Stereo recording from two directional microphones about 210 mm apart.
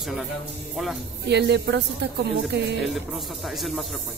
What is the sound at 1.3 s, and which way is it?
A woman's voice, 55° right (ahead or behind).